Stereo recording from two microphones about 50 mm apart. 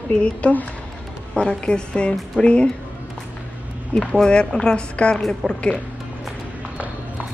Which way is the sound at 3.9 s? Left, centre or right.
Centre.